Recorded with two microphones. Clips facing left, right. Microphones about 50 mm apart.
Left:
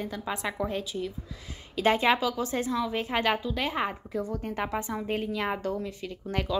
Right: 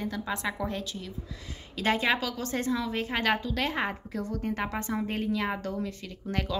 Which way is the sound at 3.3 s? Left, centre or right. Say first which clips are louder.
Even; centre.